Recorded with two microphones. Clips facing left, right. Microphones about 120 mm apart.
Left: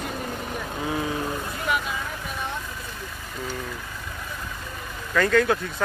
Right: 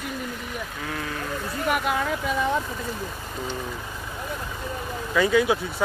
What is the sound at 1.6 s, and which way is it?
Speech, 60° right (ahead or behind).